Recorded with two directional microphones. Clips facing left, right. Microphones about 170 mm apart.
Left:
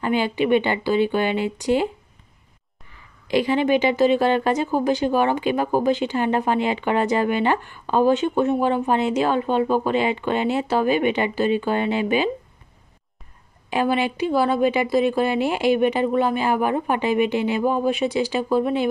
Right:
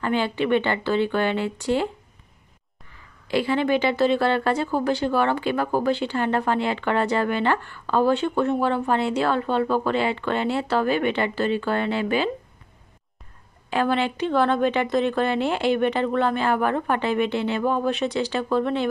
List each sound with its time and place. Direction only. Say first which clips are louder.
0.0 s a woman's voice: left 2 dB; 15° left (ahead or behind)
3.3 s a woman's voice: left 2 dB; 15° left (ahead or behind)
13.7 s a woman's voice: left 1 dB; 15° left (ahead or behind)